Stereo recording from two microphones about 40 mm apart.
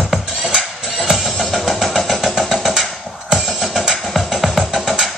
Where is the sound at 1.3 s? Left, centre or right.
Centre.